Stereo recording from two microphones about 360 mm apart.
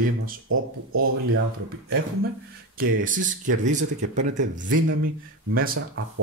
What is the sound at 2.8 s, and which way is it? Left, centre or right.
Speech, right.